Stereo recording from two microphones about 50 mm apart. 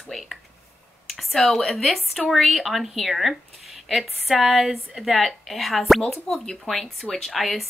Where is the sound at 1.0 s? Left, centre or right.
Centre.